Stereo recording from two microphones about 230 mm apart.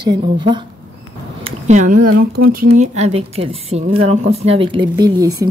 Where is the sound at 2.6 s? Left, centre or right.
Right.